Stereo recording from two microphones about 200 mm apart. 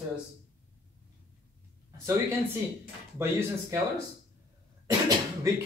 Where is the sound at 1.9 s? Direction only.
15° right (ahead or behind).